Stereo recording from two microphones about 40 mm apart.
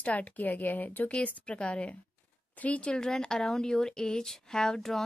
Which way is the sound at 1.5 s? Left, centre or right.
Left.